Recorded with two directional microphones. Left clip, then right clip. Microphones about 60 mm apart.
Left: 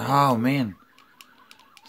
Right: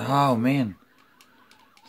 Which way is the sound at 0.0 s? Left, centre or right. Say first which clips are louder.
Left 1 dB; left.